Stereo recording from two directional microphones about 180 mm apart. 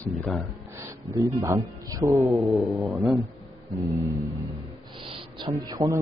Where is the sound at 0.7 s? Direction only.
15° right (ahead or behind).